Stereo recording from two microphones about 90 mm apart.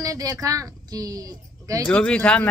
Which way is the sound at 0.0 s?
40° right (ahead or behind).